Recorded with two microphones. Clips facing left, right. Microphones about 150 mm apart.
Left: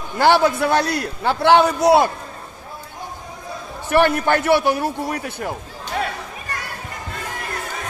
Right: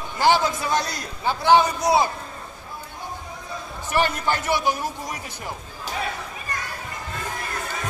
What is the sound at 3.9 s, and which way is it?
A man's voice, 60° left (ahead or behind).